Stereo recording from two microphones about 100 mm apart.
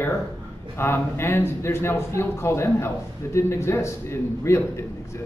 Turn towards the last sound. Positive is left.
turn(degrees=25)  # may be behind; listen again after turning